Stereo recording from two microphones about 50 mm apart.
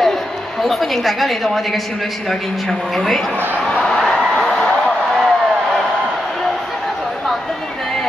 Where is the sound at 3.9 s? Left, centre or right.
Centre.